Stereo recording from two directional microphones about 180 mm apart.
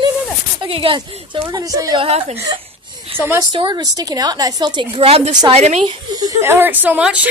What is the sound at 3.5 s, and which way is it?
Speech, 25° right (ahead or behind).